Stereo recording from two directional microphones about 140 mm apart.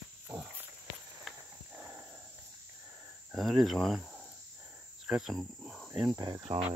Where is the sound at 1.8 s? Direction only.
10° right (ahead or behind).